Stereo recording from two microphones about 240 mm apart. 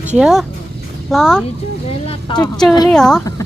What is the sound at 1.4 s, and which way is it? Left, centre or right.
Speech, left.